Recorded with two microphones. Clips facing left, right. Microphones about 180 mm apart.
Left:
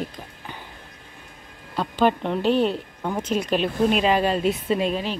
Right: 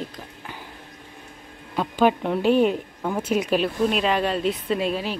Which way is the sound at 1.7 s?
10° right (ahead or behind).